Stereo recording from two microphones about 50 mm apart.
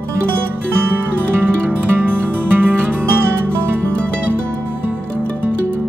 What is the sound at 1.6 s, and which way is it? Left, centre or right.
Music, right.